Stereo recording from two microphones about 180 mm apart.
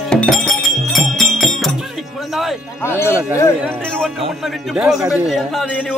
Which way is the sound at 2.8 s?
15° left (ahead or behind).